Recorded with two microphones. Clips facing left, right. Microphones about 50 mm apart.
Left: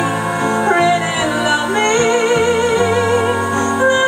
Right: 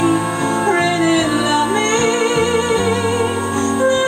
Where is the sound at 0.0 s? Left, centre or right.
Centre.